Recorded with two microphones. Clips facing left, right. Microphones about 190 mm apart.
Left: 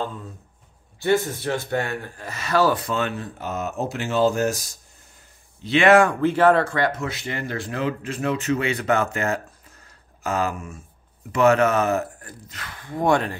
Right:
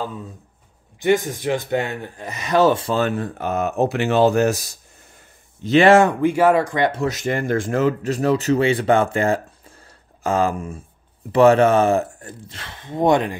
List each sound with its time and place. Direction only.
0.9 s speech: 15° right (ahead or behind)
3.1 s speech: 55° right (ahead or behind)
5.6 s speech: 40° right (ahead or behind)
5.9 s speech: 25° right (ahead or behind)
6.2 s speech: 10° right (ahead or behind)
6.9 s speech: 35° right (ahead or behind); by 13.4 s 20° right (ahead or behind)